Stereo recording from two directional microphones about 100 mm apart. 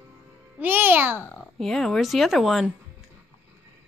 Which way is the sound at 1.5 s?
5° left (ahead or behind).